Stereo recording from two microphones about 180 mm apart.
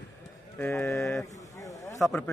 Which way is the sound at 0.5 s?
5° left (ahead or behind).